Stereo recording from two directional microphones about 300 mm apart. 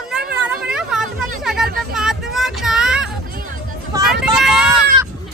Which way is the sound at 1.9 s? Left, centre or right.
Centre.